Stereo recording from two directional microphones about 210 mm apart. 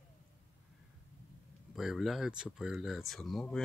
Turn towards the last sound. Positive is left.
turn(degrees=0)  # may be behind; listen again after turning